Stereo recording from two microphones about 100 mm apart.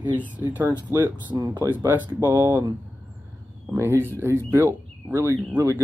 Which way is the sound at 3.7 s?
25° right (ahead or behind).